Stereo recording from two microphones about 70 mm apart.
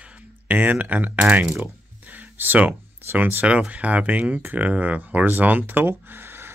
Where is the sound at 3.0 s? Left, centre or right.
Right.